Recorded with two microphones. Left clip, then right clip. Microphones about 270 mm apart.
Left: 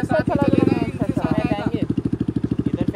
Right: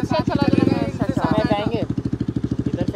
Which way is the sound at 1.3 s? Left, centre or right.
Right.